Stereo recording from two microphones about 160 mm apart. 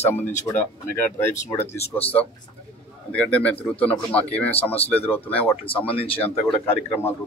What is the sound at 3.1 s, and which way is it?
Speech, 10° left (ahead or behind).